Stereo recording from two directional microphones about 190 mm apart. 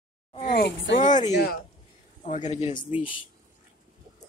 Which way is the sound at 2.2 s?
40° left (ahead or behind).